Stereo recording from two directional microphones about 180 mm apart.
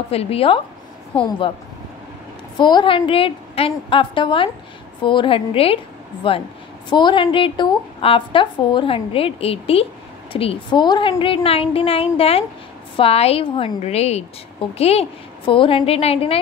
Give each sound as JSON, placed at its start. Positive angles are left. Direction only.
{"t": 0.1, "sound": "a woman's voice", "side_deg": 35}
{"t": 2.5, "sound": "a woman's voice", "side_deg": 25}